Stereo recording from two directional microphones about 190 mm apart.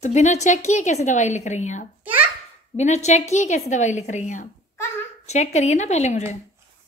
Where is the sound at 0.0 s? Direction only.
35° left (ahead or behind).